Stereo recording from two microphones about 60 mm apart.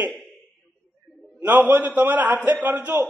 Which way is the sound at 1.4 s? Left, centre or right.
Right.